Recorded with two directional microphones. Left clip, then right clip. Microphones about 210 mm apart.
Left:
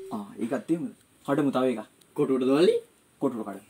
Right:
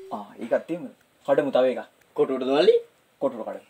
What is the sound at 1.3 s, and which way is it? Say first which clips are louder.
Speech: right 5 dB; 30° left (ahead or behind).